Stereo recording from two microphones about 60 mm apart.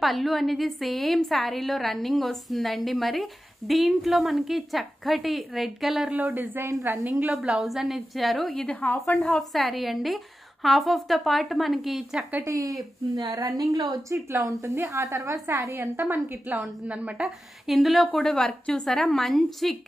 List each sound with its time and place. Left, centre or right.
0.0 s a woman's voice: centre
6.1 s a woman's voice: right
7.3 s a woman's voice: centre
8.5 s a woman's voice: left
9.5 s a woman's voice: centre
13.1 s a woman's voice: right
14.4 s a woman's voice: right
16.0 s a woman's voice: right
16.9 s speech: centre
17.6 s a woman's voice: centre